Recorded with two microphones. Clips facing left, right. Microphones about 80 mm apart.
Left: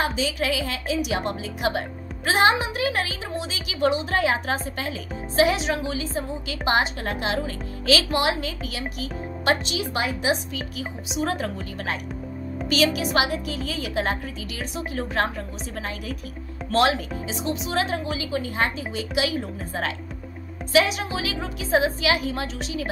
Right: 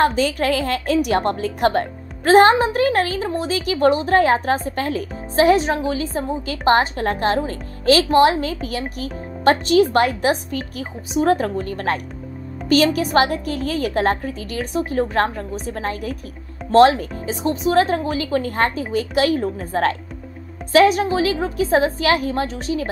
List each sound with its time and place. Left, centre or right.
0.0 s a woman's voice: right